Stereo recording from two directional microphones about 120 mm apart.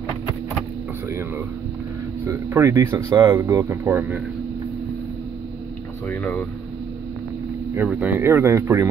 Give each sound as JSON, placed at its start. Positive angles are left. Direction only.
{"t": 2.2, "sound": "speech", "side_deg": -25}
{"t": 3.3, "sound": "speech", "side_deg": -25}
{"t": 6.0, "sound": "speech", "side_deg": 10}
{"t": 7.9, "sound": "speech", "side_deg": -10}
{"t": 8.2, "sound": "speech", "side_deg": -25}